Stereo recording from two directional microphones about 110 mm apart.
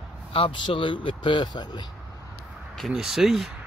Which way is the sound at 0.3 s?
50° left (ahead or behind).